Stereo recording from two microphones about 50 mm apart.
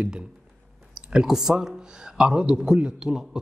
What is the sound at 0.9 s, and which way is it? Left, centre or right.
A man's voice, centre.